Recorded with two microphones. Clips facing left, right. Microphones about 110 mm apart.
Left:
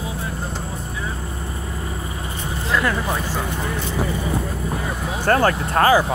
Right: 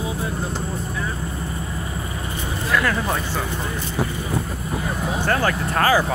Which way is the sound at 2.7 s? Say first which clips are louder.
Even; 20° left (ahead or behind).